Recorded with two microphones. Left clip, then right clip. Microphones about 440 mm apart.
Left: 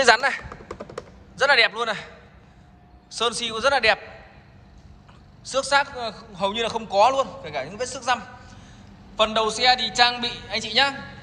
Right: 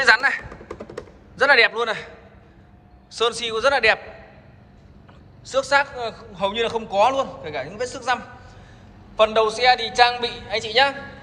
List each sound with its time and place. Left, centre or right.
0.0 s a sound: centre
1.3 s a man's voice: centre
5.4 s a man's voice: centre